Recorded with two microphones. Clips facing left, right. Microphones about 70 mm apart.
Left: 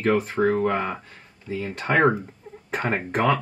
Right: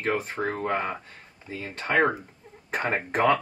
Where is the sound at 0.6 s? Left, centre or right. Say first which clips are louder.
Left 4 dB; centre.